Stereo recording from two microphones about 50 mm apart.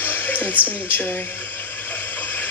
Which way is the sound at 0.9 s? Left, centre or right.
Left.